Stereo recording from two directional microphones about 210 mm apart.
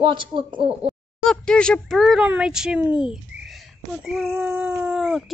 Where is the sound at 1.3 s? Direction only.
5° left (ahead or behind).